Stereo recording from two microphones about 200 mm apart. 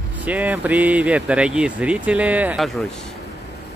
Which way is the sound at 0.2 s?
10° right (ahead or behind).